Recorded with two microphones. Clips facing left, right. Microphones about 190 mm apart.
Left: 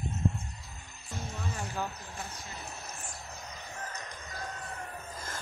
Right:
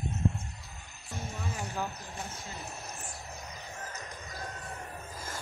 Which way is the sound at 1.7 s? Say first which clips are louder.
Even; centre (ahead or behind).